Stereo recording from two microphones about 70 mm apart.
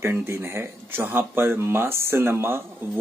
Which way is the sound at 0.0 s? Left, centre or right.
Right.